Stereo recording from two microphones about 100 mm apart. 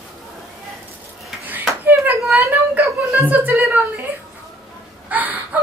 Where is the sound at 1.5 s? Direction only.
20° right (ahead or behind).